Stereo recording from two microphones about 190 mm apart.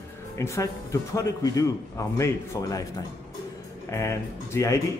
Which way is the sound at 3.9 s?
15° left (ahead or behind).